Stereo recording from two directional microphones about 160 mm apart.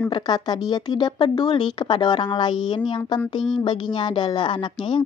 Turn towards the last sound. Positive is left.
turn(degrees=30)  # may be behind; listen again after turning